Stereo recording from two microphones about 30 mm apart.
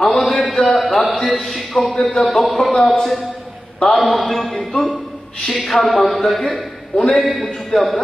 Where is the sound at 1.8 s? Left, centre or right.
Centre.